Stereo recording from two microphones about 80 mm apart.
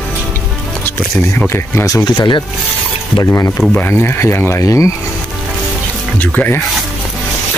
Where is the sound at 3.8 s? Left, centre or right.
Left.